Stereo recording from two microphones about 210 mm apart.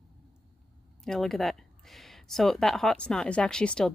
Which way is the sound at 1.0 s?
Centre (ahead or behind).